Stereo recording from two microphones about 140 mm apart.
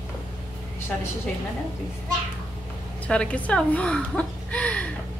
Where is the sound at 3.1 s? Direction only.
10° left (ahead or behind).